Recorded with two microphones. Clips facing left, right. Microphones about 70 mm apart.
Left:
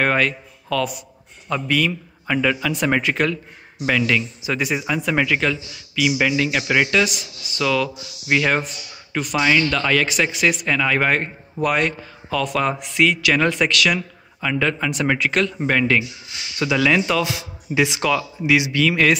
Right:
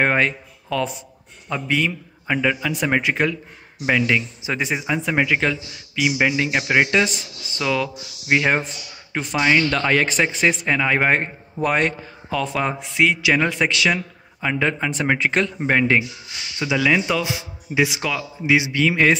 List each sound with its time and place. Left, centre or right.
0.0 s a man's voice: right
9.4 s a man's voice: centre
9.7 s a man's voice: right
16.5 s a man's voice: centre; by 19.1 s right